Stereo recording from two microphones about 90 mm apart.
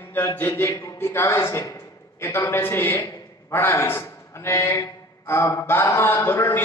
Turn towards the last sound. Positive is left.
turn(degrees=25)  # may be behind; listen again after turning